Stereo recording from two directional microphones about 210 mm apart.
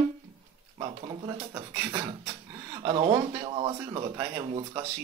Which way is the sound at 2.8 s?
25° right (ahead or behind).